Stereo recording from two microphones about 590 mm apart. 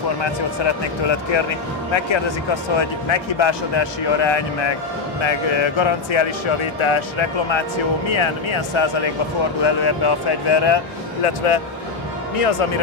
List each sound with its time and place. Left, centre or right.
0.2 s a man's voice: left
2.5 s a man's voice: left
11.2 s speech: left